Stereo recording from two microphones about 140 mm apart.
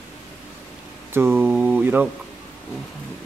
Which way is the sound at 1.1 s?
15° right (ahead or behind).